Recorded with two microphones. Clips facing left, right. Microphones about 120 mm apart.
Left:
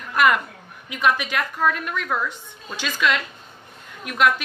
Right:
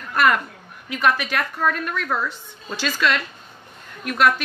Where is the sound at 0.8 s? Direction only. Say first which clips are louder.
Right 1 dB; 15° left (ahead or behind).